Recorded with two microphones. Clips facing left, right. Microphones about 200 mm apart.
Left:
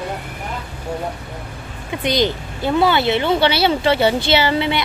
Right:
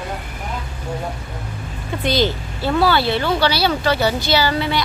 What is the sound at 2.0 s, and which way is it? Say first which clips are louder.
Speech: even; 20° left (ahead or behind).